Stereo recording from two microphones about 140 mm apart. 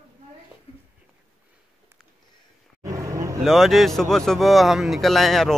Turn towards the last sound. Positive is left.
turn(degrees=0)  # may be behind; listen again after turning